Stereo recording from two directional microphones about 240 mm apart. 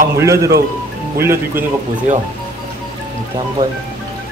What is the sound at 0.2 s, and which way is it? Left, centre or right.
Speech, centre.